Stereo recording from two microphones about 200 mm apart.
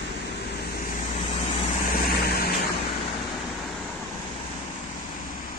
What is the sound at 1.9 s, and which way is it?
Vehicle, 50° left (ahead or behind).